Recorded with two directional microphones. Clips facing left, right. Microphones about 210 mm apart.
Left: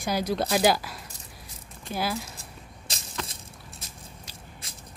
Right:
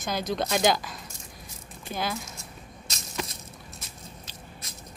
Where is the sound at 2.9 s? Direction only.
30° left (ahead or behind).